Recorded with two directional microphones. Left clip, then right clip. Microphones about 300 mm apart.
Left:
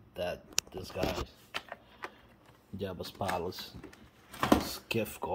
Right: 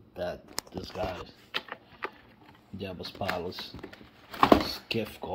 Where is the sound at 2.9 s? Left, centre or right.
Centre.